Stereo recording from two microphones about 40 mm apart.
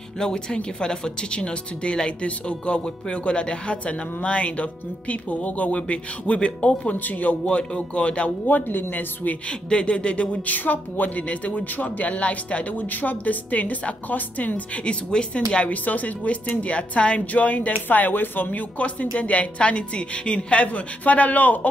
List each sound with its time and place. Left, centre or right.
0.2 s speech: centre; by 7.3 s left
7.4 s speech: left
8.5 s a woman's voice: left
9.5 s speech: left
10.4 s speech: left
12.7 s a woman's voice: left
14.9 s a woman's voice: left
18.8 s speech: left